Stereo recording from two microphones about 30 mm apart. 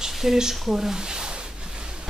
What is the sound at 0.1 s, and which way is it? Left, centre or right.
Speech, centre.